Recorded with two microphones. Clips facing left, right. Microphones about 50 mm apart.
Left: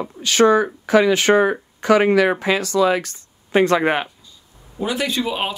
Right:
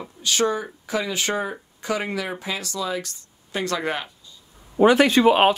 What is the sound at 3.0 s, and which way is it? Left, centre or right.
Speech, left.